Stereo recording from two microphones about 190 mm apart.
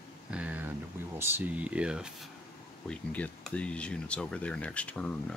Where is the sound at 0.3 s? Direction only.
10° right (ahead or behind).